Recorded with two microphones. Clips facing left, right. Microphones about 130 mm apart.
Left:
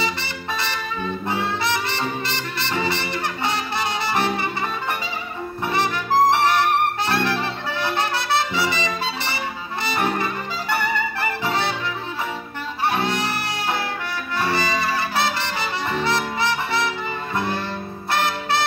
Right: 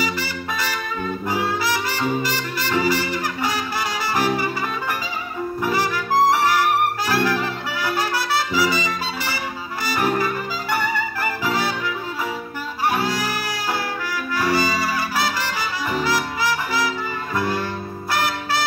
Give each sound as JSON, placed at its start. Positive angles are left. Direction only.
{"t": 0.0, "sound": "music", "side_deg": 25}
{"t": 5.6, "sound": "music", "side_deg": 25}
{"t": 6.3, "sound": "brass instrument", "side_deg": 25}
{"t": 9.8, "sound": "music", "side_deg": 25}
{"t": 12.9, "sound": "music", "side_deg": 25}